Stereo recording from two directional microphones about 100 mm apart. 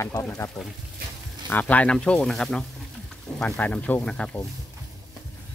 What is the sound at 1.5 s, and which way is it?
Speech, 15° left (ahead or behind).